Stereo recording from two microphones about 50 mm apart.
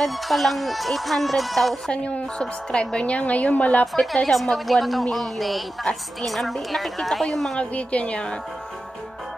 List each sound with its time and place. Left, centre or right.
0.0 s speech: centre
1.9 s a woman's voice: left
3.8 s speech: centre
7.5 s a woman's voice: left